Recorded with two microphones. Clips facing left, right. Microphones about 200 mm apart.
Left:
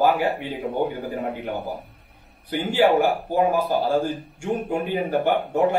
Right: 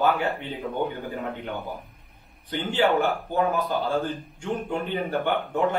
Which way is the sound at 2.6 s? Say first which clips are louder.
Left 4 dB; 10° left (ahead or behind).